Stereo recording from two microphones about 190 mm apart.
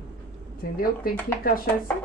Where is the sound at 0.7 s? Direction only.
50° left (ahead or behind).